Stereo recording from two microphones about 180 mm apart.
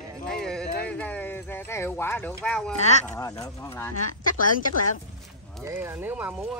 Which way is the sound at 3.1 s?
20° left (ahead or behind).